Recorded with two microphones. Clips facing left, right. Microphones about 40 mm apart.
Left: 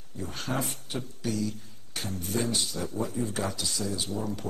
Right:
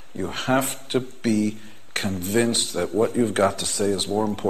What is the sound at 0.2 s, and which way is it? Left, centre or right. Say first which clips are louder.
Speech: right 10 dB; right.